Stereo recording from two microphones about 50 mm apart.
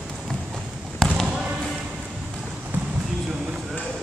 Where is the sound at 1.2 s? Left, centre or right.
Centre.